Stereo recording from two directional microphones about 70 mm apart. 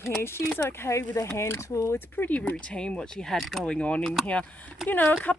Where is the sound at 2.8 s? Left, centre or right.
Centre.